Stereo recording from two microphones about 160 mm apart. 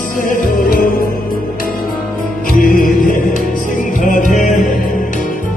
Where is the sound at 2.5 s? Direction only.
60° left (ahead or behind).